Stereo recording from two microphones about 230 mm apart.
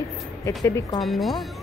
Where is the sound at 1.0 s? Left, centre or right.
Centre.